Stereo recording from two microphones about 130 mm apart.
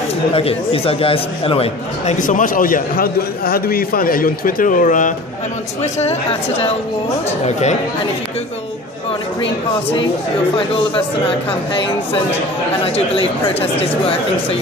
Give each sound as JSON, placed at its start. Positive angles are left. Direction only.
{"t": 0.3, "sound": "speech", "side_deg": 45}
{"t": 2.1, "sound": "speech", "side_deg": 90}
{"t": 3.9, "sound": "speech", "side_deg": 90}
{"t": 7.2, "sound": "speech", "side_deg": 60}
{"t": 12.8, "sound": "speech", "side_deg": 50}